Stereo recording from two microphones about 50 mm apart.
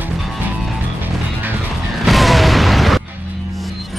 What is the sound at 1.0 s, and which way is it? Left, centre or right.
Music, right.